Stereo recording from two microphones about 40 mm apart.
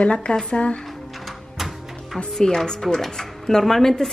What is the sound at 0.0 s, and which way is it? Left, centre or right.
Speech, left.